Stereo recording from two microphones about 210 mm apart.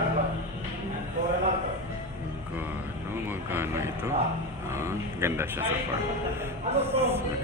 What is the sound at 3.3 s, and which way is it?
Speech, 10° right (ahead or behind).